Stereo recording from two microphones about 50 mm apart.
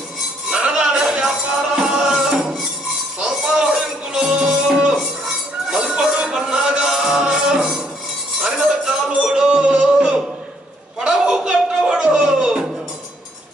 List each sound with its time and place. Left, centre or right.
0.5 s music: centre
8.8 s music: centre
11.0 s a sound: centre